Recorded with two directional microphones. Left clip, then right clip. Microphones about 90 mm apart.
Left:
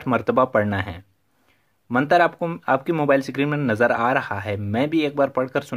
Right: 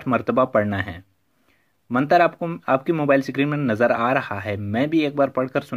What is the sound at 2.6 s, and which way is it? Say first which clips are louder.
Speech: even; 15° left (ahead or behind).